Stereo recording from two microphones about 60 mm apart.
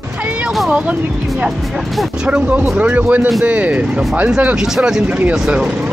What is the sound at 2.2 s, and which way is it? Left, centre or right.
Speech, centre.